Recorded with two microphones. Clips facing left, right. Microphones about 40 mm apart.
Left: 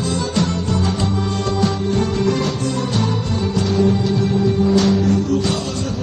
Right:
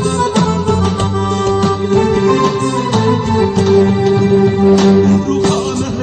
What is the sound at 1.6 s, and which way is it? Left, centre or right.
Music, right.